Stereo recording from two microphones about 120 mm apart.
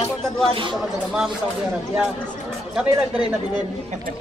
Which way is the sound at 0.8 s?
5° right (ahead or behind).